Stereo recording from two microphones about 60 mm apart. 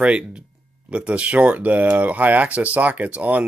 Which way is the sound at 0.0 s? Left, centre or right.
Centre.